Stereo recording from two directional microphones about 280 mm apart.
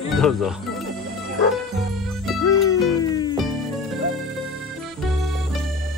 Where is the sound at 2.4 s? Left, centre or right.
Centre.